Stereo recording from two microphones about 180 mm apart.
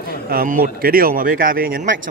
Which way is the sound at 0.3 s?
55° right (ahead or behind).